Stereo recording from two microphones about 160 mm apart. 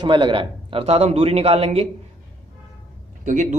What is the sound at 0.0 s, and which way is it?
Speech, 30° right (ahead or behind).